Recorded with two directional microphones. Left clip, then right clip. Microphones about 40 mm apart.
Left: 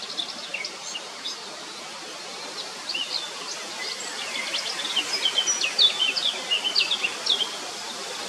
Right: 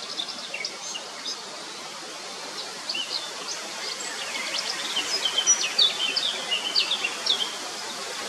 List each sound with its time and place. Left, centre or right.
3.8 s bird: centre